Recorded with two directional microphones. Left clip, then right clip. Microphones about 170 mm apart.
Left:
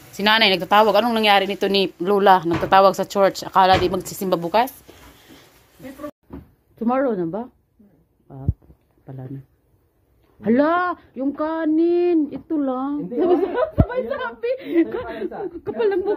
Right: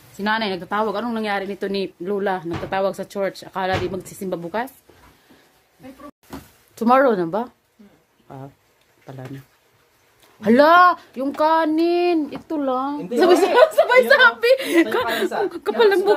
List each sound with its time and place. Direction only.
0.2 s a woman's voice: 5° right (ahead or behind)
6.7 s speech: 20° right (ahead or behind)
10.4 s speech: 20° right (ahead or behind)
13.2 s a woman's voice: 30° right (ahead or behind)
14.4 s speech: 15° right (ahead or behind)